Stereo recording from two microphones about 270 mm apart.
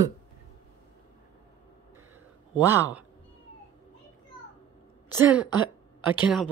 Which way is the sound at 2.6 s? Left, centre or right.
Centre.